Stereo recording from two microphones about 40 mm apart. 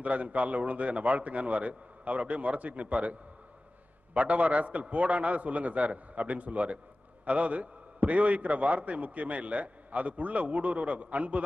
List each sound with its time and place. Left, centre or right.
0.0 s a man's voice: right